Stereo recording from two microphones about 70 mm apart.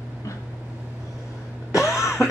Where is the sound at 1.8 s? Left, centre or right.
Left.